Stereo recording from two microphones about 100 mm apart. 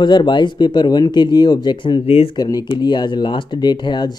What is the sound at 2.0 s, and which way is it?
Speech, 80° left.